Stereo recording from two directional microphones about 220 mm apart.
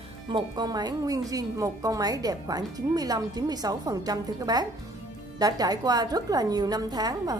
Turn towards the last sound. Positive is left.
turn(degrees=-20)  # may be behind; listen again after turning